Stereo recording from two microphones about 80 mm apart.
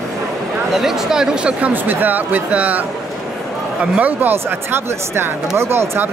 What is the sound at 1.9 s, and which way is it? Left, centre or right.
Speech, right.